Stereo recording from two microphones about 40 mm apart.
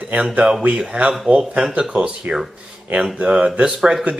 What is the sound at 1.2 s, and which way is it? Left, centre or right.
Speech, right.